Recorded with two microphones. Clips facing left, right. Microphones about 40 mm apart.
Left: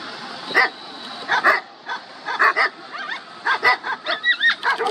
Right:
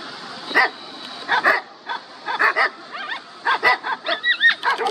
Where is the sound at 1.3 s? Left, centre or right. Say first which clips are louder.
Even; centre.